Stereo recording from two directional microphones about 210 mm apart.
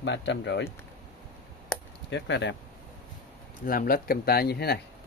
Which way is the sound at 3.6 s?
45° left (ahead or behind).